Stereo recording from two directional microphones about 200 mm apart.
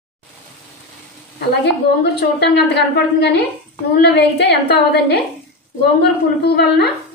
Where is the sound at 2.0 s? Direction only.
55° left (ahead or behind).